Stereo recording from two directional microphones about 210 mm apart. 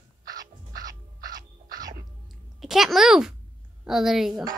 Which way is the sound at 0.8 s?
20° right (ahead or behind).